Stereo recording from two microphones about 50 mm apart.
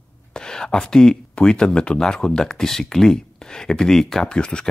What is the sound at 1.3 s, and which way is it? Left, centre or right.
Speech, centre.